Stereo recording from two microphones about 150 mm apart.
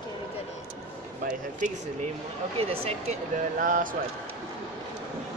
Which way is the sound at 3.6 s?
65° right (ahead or behind).